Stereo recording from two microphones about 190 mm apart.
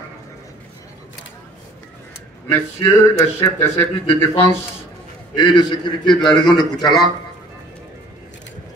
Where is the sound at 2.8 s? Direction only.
15° left (ahead or behind).